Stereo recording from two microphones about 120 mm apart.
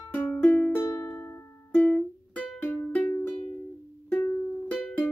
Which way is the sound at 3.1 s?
25° left (ahead or behind).